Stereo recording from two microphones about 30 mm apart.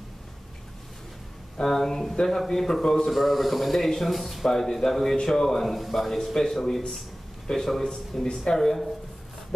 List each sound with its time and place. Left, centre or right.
1.6 s a man's voice: centre
3.1 s a man's voice: centre
4.5 s a man's voice: centre
6.3 s a man's voice: centre